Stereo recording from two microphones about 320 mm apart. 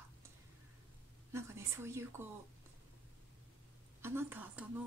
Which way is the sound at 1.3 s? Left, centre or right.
Centre.